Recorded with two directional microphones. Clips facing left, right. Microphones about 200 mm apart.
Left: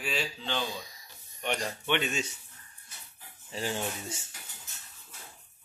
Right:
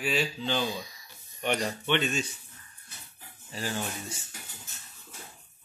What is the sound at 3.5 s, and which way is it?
Speech, 25° left (ahead or behind).